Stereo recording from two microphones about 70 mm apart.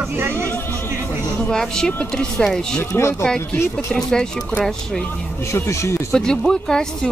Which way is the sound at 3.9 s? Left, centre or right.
Centre.